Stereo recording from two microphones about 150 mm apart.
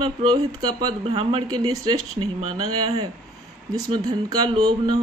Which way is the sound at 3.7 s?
25° right (ahead or behind).